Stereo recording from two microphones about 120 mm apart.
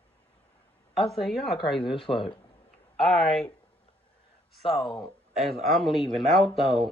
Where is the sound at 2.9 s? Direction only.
Centre (ahead or behind).